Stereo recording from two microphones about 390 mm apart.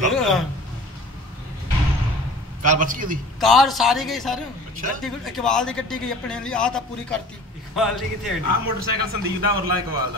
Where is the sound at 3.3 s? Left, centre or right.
Centre.